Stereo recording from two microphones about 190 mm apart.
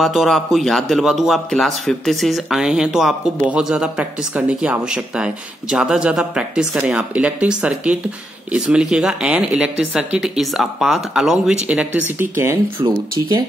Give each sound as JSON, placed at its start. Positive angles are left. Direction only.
{"t": 0.0, "sound": "a man's voice", "side_deg": 0}